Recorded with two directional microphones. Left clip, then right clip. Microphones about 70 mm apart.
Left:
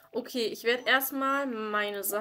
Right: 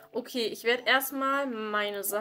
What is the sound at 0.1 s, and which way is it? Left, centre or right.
Speech, centre.